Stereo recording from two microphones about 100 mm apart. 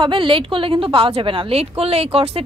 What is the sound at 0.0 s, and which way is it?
Speech, 55° right (ahead or behind).